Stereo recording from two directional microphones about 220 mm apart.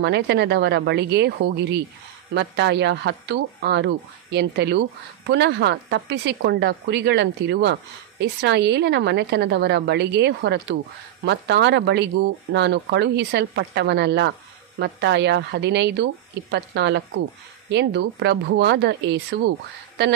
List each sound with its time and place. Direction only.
0.0 s speech: 50° right (ahead or behind)